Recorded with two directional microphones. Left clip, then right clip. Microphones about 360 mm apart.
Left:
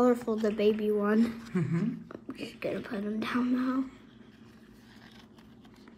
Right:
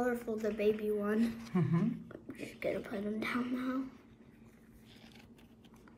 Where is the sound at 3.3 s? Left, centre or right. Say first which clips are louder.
Left 9 dB; centre.